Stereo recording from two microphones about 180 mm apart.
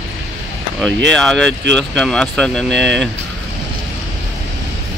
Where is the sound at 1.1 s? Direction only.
5° left (ahead or behind).